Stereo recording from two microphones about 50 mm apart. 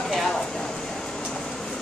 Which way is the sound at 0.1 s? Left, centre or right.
Centre.